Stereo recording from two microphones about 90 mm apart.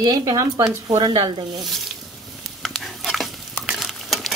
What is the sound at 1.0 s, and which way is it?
Cutlery, 55° right (ahead or behind).